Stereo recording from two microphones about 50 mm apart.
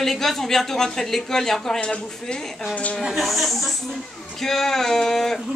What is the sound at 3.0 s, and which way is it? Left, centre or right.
A woman's voice, centre.